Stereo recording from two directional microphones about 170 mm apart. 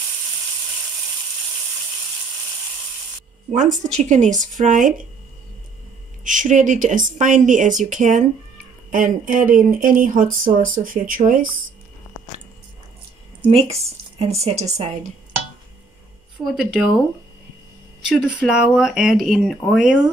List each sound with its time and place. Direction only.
3.5 s speech: 45° right (ahead or behind)
6.2 s speech: 50° right (ahead or behind)
13.5 s speech: 35° right (ahead or behind)
16.4 s speech: centre (ahead or behind)
18.0 s speech: 5° right (ahead or behind)